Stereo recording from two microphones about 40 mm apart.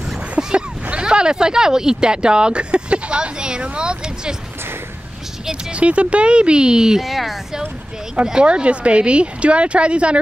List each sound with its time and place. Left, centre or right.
0.4 s a sound: centre
0.8 s speech: right
5.5 s speech: right
7.0 s speech: centre
8.3 s speech: right